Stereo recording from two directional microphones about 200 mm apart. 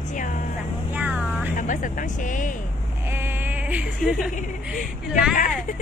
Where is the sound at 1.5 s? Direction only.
40° left (ahead or behind).